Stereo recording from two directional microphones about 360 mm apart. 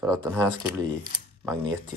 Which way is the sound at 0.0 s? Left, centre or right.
Centre.